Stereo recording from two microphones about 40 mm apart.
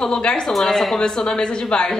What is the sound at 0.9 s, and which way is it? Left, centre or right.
Speech, centre.